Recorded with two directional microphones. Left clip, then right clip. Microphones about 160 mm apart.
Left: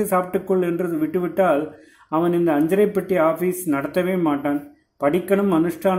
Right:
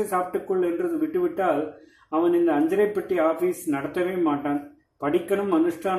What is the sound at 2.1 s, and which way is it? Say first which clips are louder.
Speech: left 2 dB; 45° left (ahead or behind).